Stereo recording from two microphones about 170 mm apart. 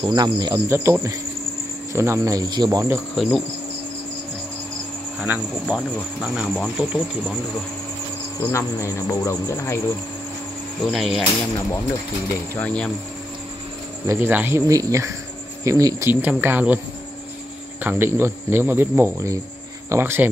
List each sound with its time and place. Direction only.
0.0 s speech: 25° right (ahead or behind)
3.2 s speech: centre (ahead or behind)
5.3 s speech: 10° right (ahead or behind)
5.7 s speech: centre (ahead or behind)
8.4 s cricket: 15° left (ahead or behind)
10.9 s speech: centre (ahead or behind)
12.5 s cricket: 5° left (ahead or behind)
14.0 s speech: 15° right (ahead or behind)
17.8 s speech: 15° right (ahead or behind)